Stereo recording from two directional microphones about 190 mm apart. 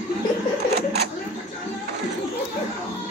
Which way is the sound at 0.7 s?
60° right (ahead or behind).